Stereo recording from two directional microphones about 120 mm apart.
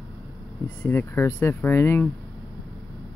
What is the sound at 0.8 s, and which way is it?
Speech, 20° left (ahead or behind).